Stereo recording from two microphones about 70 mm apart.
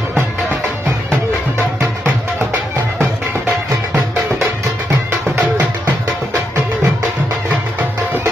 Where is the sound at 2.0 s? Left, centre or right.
Right.